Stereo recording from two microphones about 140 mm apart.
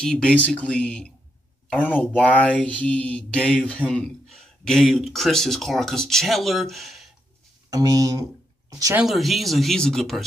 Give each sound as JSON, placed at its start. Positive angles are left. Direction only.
{"t": 0.0, "sound": "speech", "side_deg": 5}
{"t": 7.7, "sound": "speech", "side_deg": -25}
{"t": 8.9, "sound": "speech", "side_deg": 0}